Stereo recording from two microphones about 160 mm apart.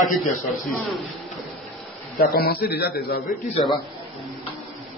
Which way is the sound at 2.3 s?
75° left (ahead or behind).